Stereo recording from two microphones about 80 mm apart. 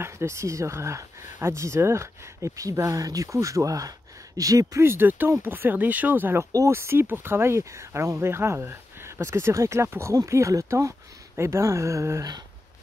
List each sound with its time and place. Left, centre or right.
0.0 s speech: right
4.8 s speech: right